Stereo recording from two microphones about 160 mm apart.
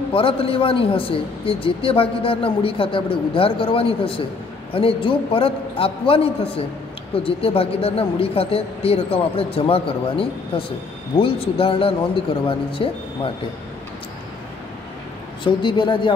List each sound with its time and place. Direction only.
0.1 s a woman's voice: 35° left (ahead or behind)
15.4 s a woman's voice: 30° left (ahead or behind)